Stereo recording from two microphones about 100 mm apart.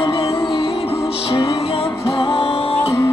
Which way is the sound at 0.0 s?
70° left (ahead or behind).